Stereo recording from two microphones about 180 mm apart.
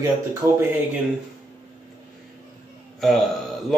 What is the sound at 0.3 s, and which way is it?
Speech, 15° right (ahead or behind).